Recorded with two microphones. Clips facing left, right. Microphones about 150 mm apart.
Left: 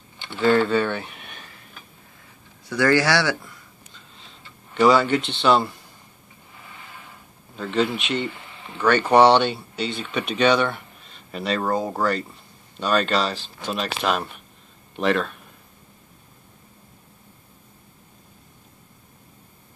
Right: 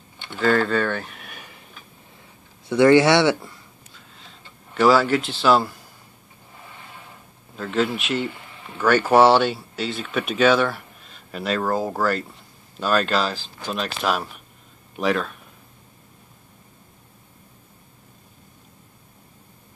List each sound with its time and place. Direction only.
0.3 s speech: centre (ahead or behind)
2.7 s speech: 25° right (ahead or behind)
4.7 s speech: centre (ahead or behind)
7.5 s speech: centre (ahead or behind)